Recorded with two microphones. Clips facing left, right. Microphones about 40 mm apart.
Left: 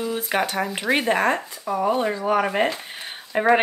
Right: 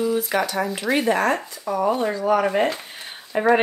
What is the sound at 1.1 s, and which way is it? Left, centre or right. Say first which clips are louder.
Speech: even; left.